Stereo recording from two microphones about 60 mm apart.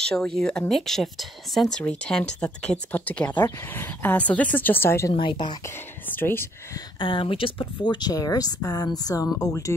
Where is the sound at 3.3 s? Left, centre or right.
Left.